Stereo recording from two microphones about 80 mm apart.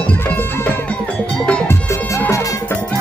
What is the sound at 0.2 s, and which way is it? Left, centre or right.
Music, left.